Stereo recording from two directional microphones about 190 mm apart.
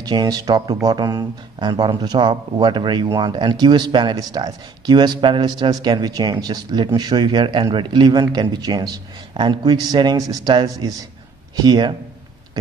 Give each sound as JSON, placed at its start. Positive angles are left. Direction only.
{"t": 0.0, "sound": "speech", "side_deg": -20}